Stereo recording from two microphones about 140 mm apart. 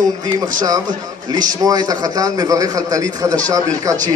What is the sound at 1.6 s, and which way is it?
Speech, 25° right (ahead or behind).